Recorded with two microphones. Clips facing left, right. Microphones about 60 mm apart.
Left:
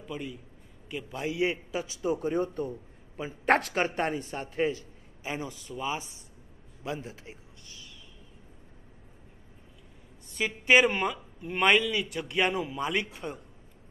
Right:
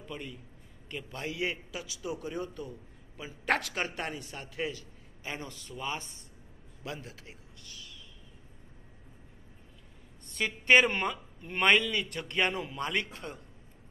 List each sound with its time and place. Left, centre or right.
0.0 s a man's voice: centre; by 4.8 s left
5.2 s a man's voice: centre
6.8 s a man's voice: left
10.3 s speech: centre